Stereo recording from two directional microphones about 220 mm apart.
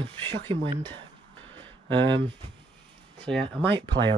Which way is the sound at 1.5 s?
20° right (ahead or behind).